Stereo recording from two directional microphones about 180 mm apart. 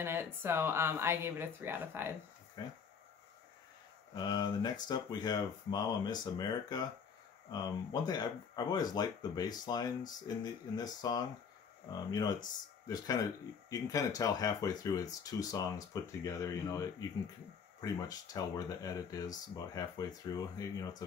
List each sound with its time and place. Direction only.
0.0 s speech: 15° right (ahead or behind)
2.6 s speech: 20° left (ahead or behind)
4.1 s speech: 25° left (ahead or behind)